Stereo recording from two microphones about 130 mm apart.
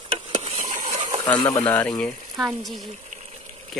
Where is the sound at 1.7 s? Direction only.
10° left (ahead or behind).